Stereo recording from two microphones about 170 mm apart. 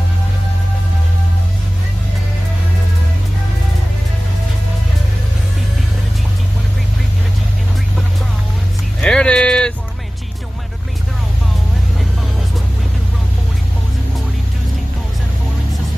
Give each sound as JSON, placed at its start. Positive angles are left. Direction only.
{"t": 9.0, "sound": "music", "side_deg": 5}